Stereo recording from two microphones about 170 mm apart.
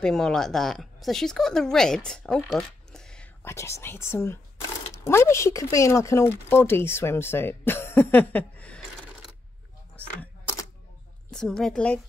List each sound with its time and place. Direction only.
0.0 s a woman's voice: 5° left (ahead or behind)
3.4 s speech: 15° left (ahead or behind)
11.2 s a woman's voice: 5° left (ahead or behind)